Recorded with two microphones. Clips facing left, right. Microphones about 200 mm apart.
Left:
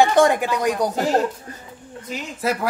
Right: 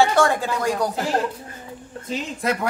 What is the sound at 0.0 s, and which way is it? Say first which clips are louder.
Speech: left 3 dB; 20° left (ahead or behind).